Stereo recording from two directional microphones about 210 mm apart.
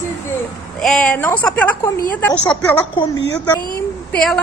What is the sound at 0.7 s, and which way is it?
A woman's voice, centre (ahead or behind).